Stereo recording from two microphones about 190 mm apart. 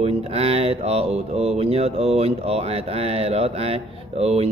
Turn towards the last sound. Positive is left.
turn(degrees=-35)  # may be behind; listen again after turning